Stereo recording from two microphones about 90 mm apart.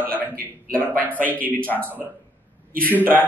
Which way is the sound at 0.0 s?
20° right (ahead or behind).